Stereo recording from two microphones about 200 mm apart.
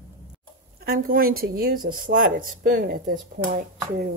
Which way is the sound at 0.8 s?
45° right (ahead or behind).